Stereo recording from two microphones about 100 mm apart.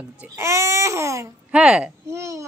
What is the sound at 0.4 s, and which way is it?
Speech, 30° right (ahead or behind).